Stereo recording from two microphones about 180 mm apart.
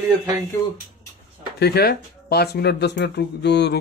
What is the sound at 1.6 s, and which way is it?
Speech, 65° left (ahead or behind).